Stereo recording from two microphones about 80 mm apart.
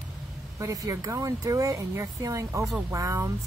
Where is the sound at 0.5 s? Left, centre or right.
Right.